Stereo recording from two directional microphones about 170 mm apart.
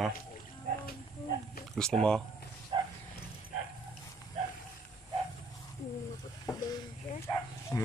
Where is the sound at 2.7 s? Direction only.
30° right (ahead or behind).